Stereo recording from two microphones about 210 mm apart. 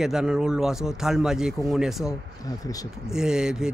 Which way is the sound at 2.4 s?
15° left (ahead or behind).